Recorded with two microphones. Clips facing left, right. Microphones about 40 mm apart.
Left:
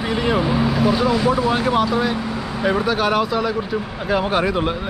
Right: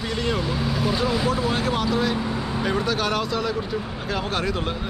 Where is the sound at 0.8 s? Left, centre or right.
Centre.